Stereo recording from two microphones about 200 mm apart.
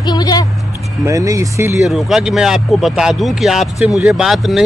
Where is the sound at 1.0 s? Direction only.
15° right (ahead or behind).